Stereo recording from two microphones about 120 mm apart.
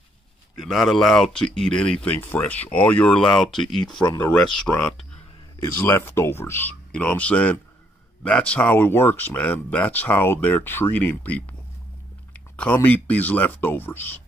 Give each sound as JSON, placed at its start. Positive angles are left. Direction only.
{"t": 0.6, "sound": "speech", "side_deg": 0}
{"t": 5.6, "sound": "speech", "side_deg": 20}
{"t": 12.5, "sound": "speech", "side_deg": 15}